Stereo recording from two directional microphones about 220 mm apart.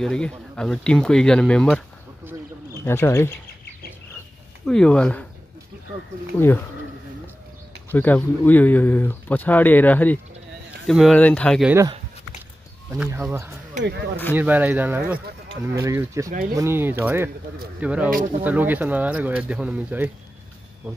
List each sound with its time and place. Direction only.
0.0 s speech: 5° left (ahead or behind)
2.8 s speech: 10° left (ahead or behind)
4.6 s speech: 5° left (ahead or behind)
6.3 s speech: 10° left (ahead or behind)
7.9 s speech: 10° left (ahead or behind)
11.7 s speech: 15° right (ahead or behind)
13.8 s speech: 50° right (ahead or behind)
14.3 s speech: 10° right (ahead or behind)
16.3 s speech: 40° right (ahead or behind)
16.5 s speech: 10° right (ahead or behind)